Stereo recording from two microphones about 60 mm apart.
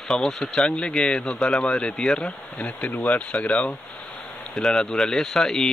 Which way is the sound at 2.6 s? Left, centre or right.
Left.